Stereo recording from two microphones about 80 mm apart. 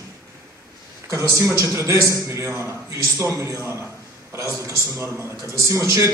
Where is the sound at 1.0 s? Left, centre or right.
Right.